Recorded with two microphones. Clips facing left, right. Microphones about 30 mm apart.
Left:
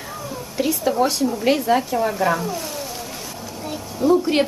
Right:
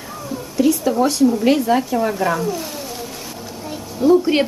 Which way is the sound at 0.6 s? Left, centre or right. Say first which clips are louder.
Right 3 dB; centre.